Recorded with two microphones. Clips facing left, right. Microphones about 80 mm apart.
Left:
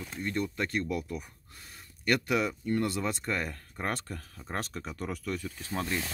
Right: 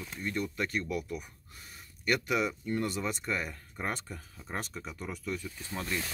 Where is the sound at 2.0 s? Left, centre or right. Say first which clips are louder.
Left 2 dB; left.